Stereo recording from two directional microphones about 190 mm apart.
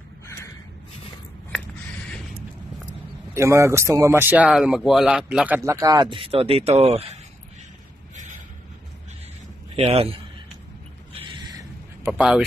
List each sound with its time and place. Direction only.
3.3 s speech: 15° right (ahead or behind)
5.6 s speech: 15° right (ahead or behind); by 7.2 s 30° right (ahead or behind)
9.8 s a man's voice: 35° right (ahead or behind)
12.0 s speech: 5° right (ahead or behind)